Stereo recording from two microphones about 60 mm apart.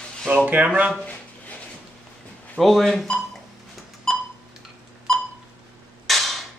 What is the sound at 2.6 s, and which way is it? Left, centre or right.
Speech, centre.